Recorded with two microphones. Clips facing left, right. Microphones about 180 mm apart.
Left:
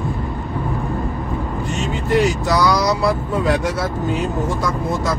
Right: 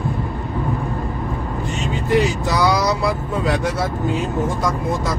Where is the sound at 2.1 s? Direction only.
15° right (ahead or behind).